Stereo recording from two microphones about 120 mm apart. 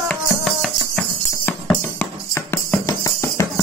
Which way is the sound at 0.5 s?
5° left (ahead or behind).